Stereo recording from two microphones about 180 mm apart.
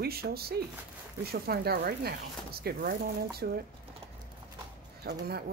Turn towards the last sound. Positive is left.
turn(degrees=-60)  # may be behind; listen again after turning